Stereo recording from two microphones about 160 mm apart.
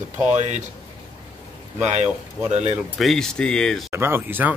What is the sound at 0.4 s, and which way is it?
Speech, 50° right (ahead or behind).